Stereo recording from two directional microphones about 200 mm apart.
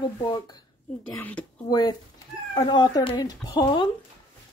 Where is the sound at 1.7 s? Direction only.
20° left (ahead or behind).